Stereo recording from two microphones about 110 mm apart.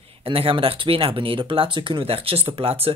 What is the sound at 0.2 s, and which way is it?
Speech, 60° right (ahead or behind).